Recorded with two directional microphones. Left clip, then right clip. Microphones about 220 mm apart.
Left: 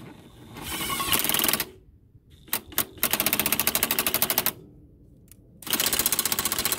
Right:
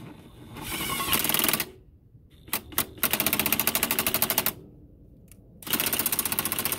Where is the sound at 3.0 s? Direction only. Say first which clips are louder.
Left 1 dB; 10° left (ahead or behind).